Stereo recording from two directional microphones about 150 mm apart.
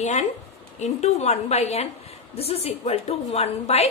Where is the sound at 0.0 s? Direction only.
50° left (ahead or behind).